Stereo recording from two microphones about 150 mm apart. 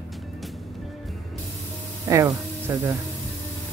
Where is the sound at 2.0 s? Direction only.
20° right (ahead or behind).